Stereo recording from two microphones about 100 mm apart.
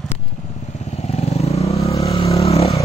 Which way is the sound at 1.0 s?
90° left.